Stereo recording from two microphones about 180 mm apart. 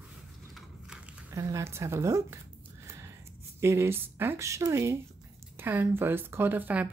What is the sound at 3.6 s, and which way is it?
Speech, 15° right (ahead or behind).